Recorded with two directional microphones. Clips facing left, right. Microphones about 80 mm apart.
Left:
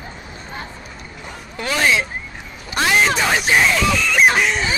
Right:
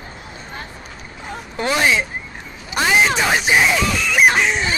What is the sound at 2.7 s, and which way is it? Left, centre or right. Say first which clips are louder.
Speech: even; centre.